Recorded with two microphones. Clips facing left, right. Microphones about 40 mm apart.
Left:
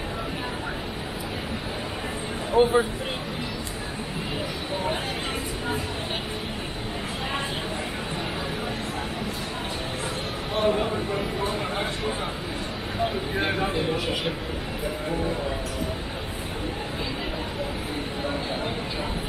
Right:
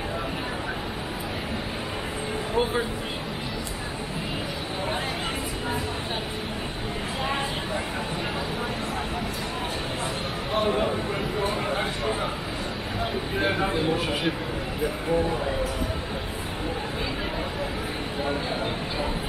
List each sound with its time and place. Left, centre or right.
2.6 s speech: left